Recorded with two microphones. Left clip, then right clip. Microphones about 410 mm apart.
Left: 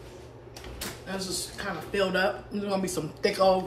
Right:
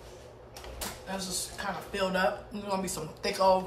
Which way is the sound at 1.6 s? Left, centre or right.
Centre.